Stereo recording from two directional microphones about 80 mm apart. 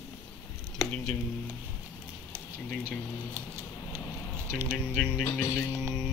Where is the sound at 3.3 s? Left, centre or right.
Right.